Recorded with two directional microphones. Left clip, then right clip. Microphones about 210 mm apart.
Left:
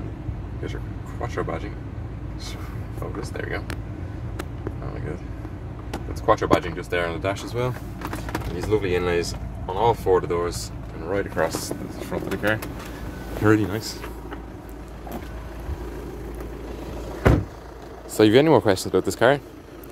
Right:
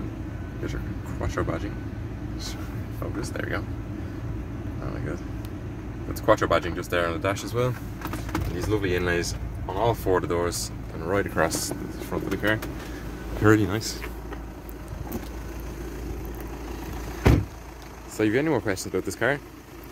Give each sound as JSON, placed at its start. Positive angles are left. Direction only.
{"t": 1.2, "sound": "speech", "side_deg": -10}
{"t": 6.2, "sound": "speech", "side_deg": -10}
{"t": 10.2, "sound": "speech", "side_deg": -15}
{"t": 11.6, "sound": "speech", "side_deg": 0}
{"t": 18.1, "sound": "speech", "side_deg": 30}